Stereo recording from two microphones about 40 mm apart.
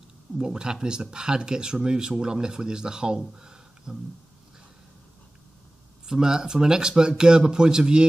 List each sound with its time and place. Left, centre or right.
0.5 s speech: centre
6.0 s speech: centre